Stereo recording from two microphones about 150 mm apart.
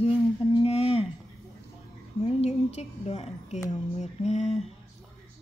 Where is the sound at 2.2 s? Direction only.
45° left (ahead or behind).